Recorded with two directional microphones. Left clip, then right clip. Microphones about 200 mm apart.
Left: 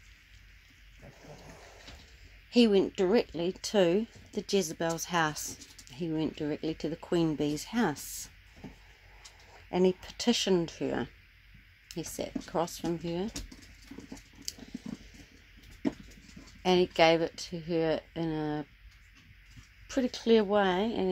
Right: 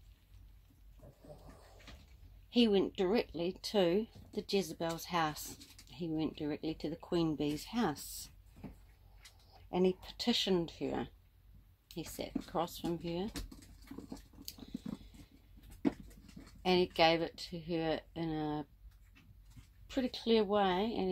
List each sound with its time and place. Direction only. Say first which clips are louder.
2.5 s speech: left 6 dB; 20° left (ahead or behind)
9.7 s speech: left 5 dB; 15° left (ahead or behind)
12.2 s speech: left 5 dB; 20° left (ahead or behind)
13.9 s patter: left 2 dB; 10° right (ahead or behind)
16.6 s speech: left 5 dB; 20° left (ahead or behind)
19.9 s speech: left 7 dB; 20° left (ahead or behind)